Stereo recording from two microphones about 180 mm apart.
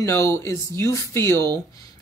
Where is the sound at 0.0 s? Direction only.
15° left (ahead or behind).